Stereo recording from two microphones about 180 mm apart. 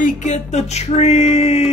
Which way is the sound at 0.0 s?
40° left (ahead or behind).